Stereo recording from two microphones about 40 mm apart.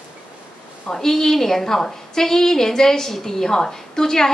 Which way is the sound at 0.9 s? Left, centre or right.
Centre.